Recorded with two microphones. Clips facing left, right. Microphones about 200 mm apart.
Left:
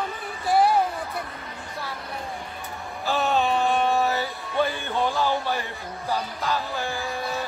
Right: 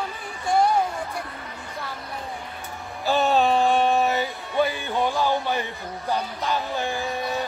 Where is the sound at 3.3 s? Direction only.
35° right (ahead or behind).